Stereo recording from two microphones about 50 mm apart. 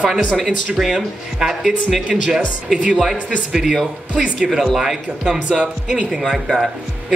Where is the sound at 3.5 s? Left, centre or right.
Centre.